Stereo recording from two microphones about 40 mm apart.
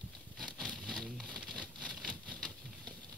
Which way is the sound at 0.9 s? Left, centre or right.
Centre.